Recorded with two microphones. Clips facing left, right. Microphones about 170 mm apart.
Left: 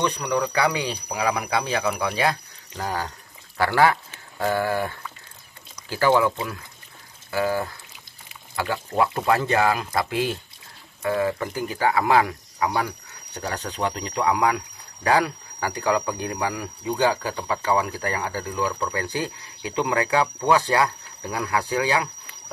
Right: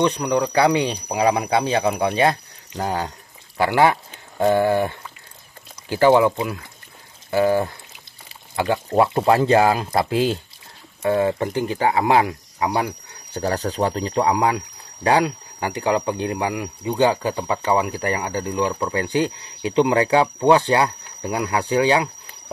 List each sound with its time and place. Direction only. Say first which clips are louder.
0.0 s speech: right 4 dB; 20° right (ahead or behind)
7.2 s pour: right 6 dB; 25° right (ahead or behind)
8.3 s speech: right 6 dB; 25° right (ahead or behind)
13.3 s speech: right 7 dB; 35° right (ahead or behind)